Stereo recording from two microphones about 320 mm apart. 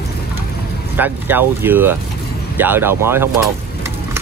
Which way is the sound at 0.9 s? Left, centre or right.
Centre.